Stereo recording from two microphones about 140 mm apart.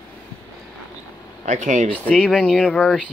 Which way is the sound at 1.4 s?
60° right (ahead or behind).